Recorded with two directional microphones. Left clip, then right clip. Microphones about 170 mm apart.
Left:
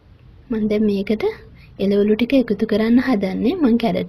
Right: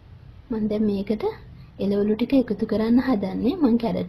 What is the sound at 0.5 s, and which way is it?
Speech, 15° left (ahead or behind).